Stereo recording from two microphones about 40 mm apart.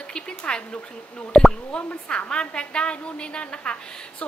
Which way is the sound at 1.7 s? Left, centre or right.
Left.